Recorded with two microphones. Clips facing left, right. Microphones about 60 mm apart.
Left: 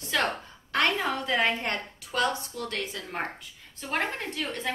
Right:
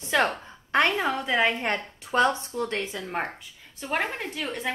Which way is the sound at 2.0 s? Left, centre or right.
Right.